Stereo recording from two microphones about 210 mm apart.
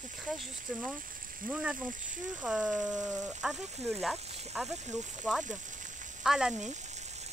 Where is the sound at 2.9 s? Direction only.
15° right (ahead or behind).